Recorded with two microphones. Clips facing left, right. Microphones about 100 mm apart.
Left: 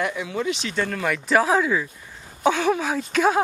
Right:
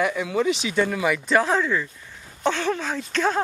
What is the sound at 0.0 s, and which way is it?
Speech, centre (ahead or behind).